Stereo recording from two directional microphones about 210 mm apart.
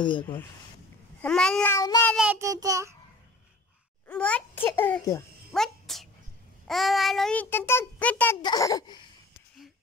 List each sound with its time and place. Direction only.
1.2 s a child's voice: 5° left (ahead or behind)
2.1 s child singing: 10° right (ahead or behind)
4.1 s a child's voice: 5° left (ahead or behind)
5.5 s a child's voice: centre (ahead or behind)
8.4 s a child's voice: 20° left (ahead or behind)